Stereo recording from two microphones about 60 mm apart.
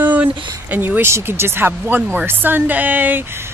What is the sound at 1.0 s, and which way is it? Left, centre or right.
Speech, right.